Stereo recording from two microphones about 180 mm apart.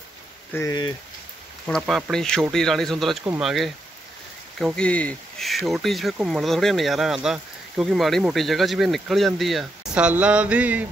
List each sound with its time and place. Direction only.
0.5 s speech: 15° left (ahead or behind)
1.7 s speech: centre (ahead or behind)